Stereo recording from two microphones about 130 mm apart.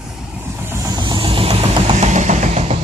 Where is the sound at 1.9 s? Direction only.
65° right (ahead or behind).